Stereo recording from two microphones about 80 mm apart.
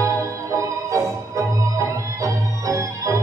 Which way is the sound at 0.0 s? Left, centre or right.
Right.